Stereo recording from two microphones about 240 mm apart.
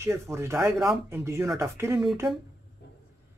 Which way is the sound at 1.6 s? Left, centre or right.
Centre.